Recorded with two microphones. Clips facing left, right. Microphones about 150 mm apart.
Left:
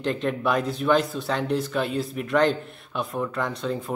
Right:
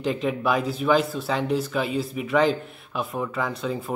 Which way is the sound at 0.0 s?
5° right (ahead or behind).